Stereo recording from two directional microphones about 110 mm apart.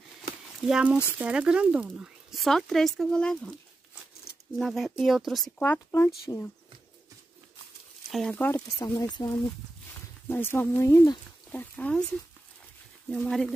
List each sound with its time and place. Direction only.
0.6 s speech: 5° right (ahead or behind)
2.0 s speech: centre (ahead or behind)
4.6 s speech: centre (ahead or behind)
5.6 s speech: 20° left (ahead or behind)
8.1 s speech: 5° left (ahead or behind)
8.7 s speech: 35° left (ahead or behind)
9.9 s speech: 20° left (ahead or behind)
11.5 s speech: 10° left (ahead or behind)
13.1 s speech: 5° left (ahead or behind)